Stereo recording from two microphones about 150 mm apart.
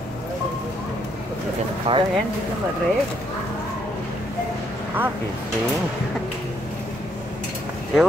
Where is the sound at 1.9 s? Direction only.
40° right (ahead or behind).